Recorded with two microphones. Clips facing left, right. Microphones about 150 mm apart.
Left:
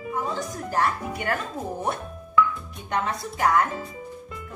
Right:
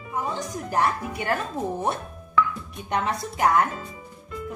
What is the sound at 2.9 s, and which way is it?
Music, 20° right (ahead or behind).